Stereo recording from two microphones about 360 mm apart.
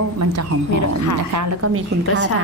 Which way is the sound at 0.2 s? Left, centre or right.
Right.